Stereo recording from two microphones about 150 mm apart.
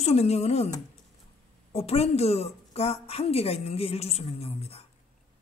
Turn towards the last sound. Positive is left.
turn(degrees=40)  # may be behind; listen again after turning